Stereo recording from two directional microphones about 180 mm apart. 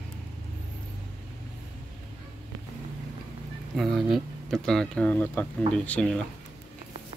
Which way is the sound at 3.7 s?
Centre (ahead or behind).